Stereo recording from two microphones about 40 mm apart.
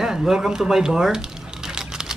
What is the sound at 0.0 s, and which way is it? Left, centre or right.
Speech, centre.